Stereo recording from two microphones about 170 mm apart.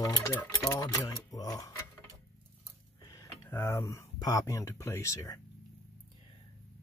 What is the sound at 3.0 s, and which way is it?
Speech, 20° left (ahead or behind).